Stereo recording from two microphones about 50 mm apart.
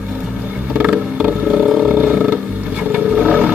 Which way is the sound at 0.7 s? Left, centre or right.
Centre.